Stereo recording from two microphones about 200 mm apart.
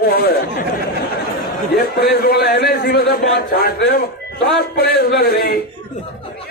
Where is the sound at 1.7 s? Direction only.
50° left (ahead or behind).